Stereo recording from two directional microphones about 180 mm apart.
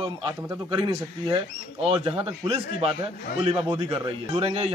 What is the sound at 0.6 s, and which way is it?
A man's voice, 30° right (ahead or behind).